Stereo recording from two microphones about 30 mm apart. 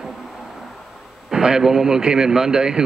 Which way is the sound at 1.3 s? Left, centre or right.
Right.